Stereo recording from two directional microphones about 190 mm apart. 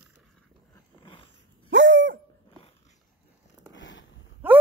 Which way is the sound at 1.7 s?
75° right (ahead or behind).